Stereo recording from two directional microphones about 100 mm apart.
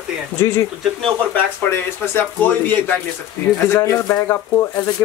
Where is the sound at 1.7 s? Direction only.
20° left (ahead or behind).